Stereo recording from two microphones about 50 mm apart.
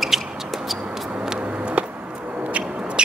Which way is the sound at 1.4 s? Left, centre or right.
Right.